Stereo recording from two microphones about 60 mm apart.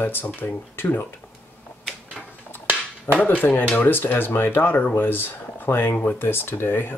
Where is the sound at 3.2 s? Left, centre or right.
Left.